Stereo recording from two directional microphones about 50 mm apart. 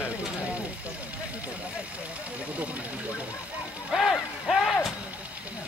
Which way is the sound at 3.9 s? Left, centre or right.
Centre.